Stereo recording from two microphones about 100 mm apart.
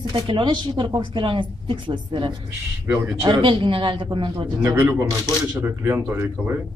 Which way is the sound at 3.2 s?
55° right (ahead or behind).